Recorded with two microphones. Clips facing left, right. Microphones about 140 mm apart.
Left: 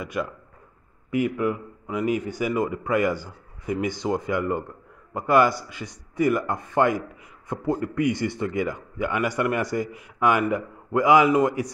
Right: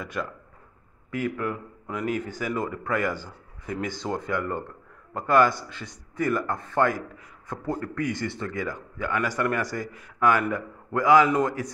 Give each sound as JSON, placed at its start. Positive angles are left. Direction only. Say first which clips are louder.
{"t": 0.0, "sound": "a man's voice", "louder": "left 3 dB", "side_deg": 10}